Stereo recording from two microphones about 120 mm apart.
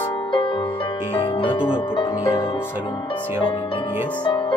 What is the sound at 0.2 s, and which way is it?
Music, 40° left (ahead or behind).